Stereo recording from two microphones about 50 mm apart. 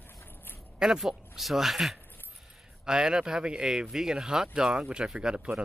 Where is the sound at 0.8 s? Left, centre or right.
Centre.